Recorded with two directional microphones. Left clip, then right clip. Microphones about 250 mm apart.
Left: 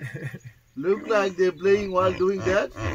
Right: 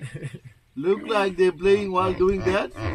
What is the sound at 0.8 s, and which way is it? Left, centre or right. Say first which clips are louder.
Speech: even; right.